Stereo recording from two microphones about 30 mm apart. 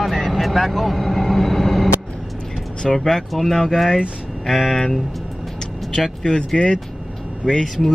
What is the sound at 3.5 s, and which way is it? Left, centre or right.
Speech, centre.